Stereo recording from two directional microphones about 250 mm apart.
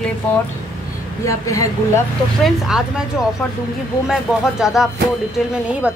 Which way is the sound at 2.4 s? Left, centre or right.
Centre.